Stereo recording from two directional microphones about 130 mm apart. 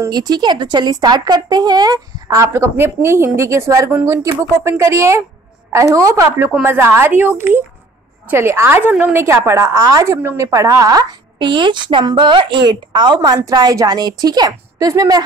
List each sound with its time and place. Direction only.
0.1 s a woman's voice: 30° right (ahead or behind)